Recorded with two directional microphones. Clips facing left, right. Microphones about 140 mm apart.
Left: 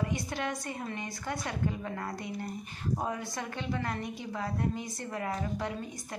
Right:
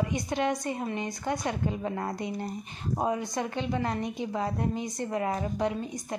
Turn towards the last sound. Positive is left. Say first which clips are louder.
# right 6 dB
turn(degrees=-20)  # may be behind; listen again after turning